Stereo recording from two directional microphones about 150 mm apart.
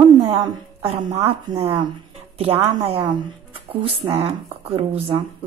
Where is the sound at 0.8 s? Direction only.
40° right (ahead or behind).